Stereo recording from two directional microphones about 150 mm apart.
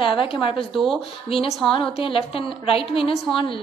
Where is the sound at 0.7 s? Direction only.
Centre (ahead or behind).